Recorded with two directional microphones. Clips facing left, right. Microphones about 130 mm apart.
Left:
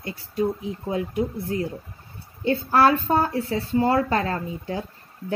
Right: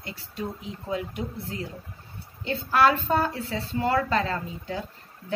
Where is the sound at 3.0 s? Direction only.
20° left (ahead or behind).